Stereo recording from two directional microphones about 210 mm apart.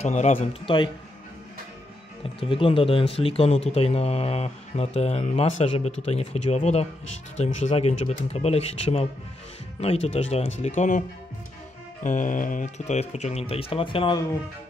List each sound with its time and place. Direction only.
0.0 s speech: 30° left (ahead or behind)
2.4 s speech: 25° left (ahead or behind)